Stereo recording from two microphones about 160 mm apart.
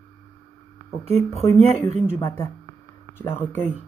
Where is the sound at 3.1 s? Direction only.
15° left (ahead or behind).